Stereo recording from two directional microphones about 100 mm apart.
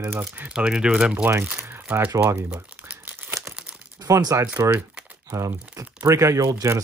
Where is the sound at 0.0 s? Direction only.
25° right (ahead or behind).